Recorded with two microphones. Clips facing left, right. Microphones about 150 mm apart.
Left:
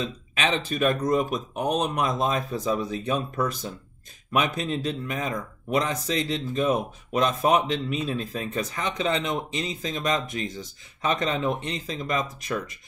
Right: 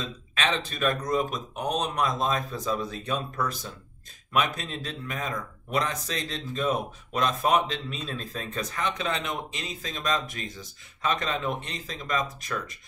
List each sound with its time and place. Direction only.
0.0 s a man's voice: 15° left (ahead or behind)